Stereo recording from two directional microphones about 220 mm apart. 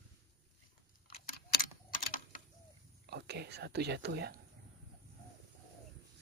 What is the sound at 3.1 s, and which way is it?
Whispering, 50° right (ahead or behind).